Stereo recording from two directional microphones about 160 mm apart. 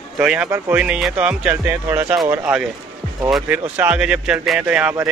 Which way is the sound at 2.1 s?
25° right (ahead or behind).